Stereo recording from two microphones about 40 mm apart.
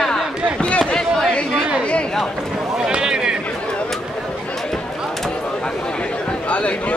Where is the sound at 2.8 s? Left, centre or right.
Centre.